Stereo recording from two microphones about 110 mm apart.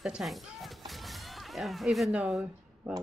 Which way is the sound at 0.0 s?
5° right (ahead or behind).